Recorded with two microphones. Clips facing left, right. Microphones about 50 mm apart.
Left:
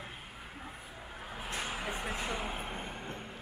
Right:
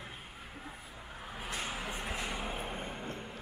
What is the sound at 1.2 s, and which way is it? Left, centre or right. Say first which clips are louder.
Vehicle: left 1 dB; centre.